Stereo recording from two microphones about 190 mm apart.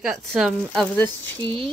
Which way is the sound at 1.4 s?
25° right (ahead or behind).